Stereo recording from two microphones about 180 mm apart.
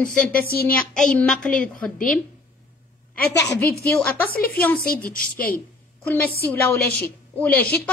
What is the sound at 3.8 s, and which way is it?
Speech, 10° left (ahead or behind).